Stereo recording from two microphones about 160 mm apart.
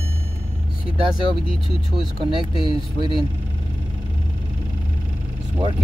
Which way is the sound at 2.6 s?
30° right (ahead or behind).